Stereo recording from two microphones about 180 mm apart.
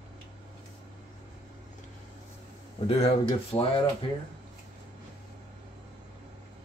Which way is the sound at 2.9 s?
30° left (ahead or behind).